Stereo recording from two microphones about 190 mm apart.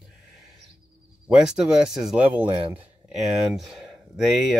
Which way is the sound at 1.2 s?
5° right (ahead or behind).